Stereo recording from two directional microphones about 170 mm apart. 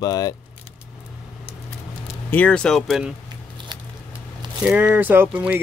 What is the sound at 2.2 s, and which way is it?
Speech, 10° left (ahead or behind).